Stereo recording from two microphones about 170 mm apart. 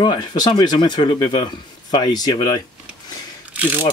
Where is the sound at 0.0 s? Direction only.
25° left (ahead or behind).